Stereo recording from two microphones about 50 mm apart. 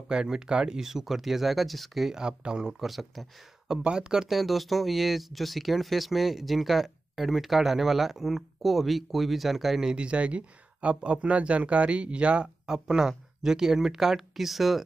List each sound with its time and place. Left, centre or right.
0.1 s speech: centre
2.1 s speech: centre
2.8 s speech: centre
3.8 s speech: centre
9.9 s speech: right; by 14.8 s centre